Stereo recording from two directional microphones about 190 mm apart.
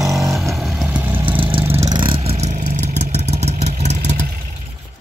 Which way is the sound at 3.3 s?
35° right (ahead or behind).